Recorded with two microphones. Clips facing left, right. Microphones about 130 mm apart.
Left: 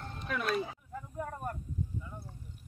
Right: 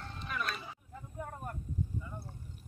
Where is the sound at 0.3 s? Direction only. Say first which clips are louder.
Left 7 dB; 60° left (ahead or behind).